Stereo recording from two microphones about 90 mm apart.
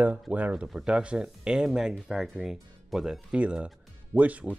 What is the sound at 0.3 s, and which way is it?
Speech, 15° right (ahead or behind).